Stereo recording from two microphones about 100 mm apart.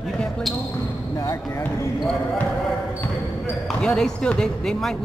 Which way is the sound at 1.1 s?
30° left (ahead or behind).